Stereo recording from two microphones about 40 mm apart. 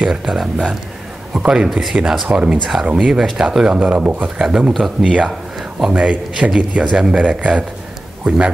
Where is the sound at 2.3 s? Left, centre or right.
Right.